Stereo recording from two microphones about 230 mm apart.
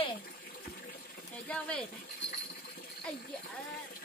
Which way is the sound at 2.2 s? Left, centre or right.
Left.